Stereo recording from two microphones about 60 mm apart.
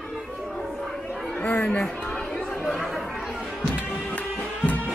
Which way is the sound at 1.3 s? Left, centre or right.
Left.